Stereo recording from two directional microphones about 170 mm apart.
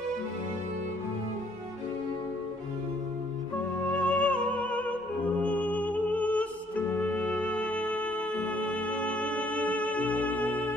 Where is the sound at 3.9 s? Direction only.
5° left (ahead or behind).